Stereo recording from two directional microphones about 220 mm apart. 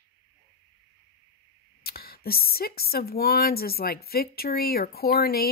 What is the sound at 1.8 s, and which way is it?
Speech, 45° left (ahead or behind).